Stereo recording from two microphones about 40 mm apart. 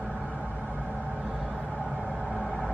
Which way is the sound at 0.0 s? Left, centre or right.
Centre.